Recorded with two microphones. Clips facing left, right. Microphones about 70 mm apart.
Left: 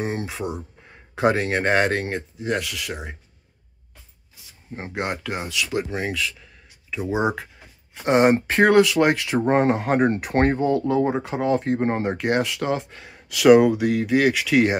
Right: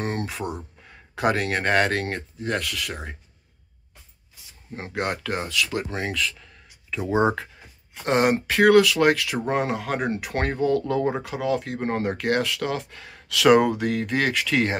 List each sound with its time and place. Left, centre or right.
0.0 s speech: centre
4.7 s speech: left
8.0 s speech: left
11.3 s speech: left
13.4 s speech: centre